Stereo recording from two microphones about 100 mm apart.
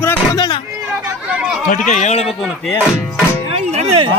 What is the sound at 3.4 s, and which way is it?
Music, 90° right.